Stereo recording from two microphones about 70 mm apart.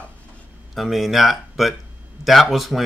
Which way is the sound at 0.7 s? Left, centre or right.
Centre.